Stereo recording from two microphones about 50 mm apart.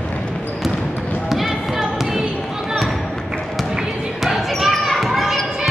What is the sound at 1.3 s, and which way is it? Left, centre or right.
Basketball bounce, centre.